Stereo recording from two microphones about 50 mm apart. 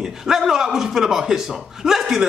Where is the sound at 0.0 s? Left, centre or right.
Centre.